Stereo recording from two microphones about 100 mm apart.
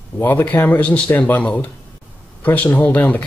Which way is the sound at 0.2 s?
20° left (ahead or behind).